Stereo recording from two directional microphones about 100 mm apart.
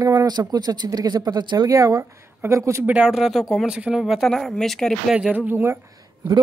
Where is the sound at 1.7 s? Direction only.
35° right (ahead or behind).